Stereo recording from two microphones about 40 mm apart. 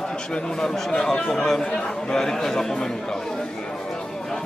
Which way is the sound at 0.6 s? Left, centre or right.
Centre.